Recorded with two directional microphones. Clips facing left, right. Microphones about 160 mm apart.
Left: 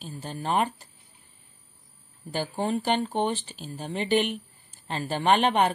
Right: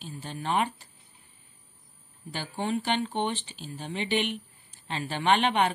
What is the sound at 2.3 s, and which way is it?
Speech, 40° left (ahead or behind).